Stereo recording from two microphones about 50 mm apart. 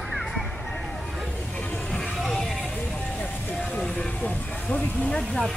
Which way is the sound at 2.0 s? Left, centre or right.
Centre.